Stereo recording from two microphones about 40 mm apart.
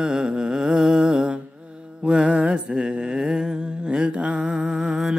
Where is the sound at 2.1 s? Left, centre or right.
Right.